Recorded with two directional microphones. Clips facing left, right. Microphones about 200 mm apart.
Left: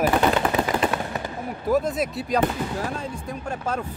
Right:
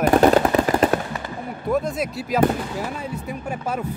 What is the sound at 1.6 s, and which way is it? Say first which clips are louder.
Speech: left 1 dB; centre (ahead or behind).